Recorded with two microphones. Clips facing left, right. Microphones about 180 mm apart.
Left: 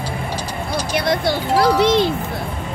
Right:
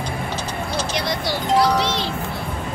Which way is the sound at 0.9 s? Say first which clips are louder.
Left 10 dB; 55° left (ahead or behind).